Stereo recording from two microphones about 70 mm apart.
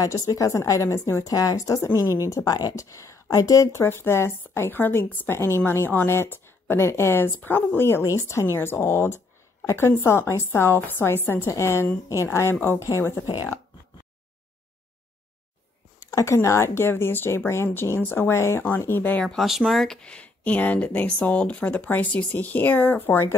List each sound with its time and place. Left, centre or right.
0.0 s a woman's voice: left
1.3 s a woman's voice: left
2.8 s a woman's voice: left
16.0 s a sound: left
16.3 s a woman's voice: left
19.2 s speech: centre; by 23.3 s left